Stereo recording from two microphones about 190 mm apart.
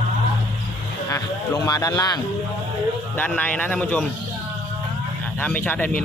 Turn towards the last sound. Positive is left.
turn(degrees=5)  # may be behind; listen again after turning